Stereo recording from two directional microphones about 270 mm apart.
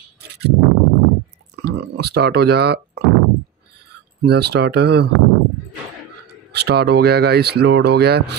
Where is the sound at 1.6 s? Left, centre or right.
Right.